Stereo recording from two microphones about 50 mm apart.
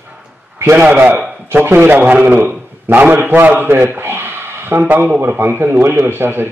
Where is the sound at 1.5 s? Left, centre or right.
Right.